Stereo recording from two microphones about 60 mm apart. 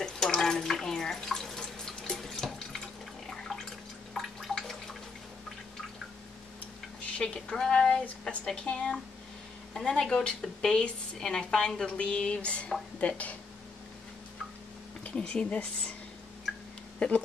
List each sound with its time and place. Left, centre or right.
0.0 s water: centre
3.3 s drip: centre
7.2 s a sound: centre
8.0 s a woman's voice: left
8.6 s a woman's voice: centre
15.0 s a woman's voice: centre
17.0 s a woman's voice: centre